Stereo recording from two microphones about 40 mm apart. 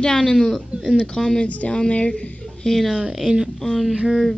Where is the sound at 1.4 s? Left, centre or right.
Left.